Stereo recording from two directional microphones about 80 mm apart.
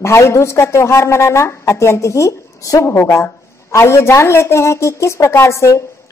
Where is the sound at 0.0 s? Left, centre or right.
Left.